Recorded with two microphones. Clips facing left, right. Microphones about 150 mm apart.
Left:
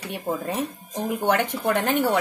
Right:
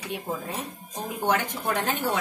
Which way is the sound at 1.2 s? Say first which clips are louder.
Left 3 dB; 65° left (ahead or behind).